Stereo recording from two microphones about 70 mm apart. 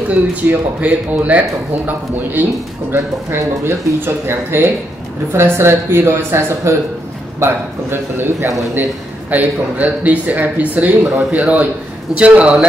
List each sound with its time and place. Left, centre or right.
0.1 s a man's voice: right
3.3 s a woman's voice: right
9.3 s a man's voice: right